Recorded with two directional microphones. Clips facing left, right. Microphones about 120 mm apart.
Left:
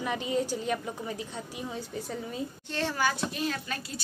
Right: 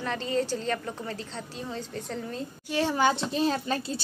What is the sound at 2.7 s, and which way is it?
A child's voice, 20° right (ahead or behind).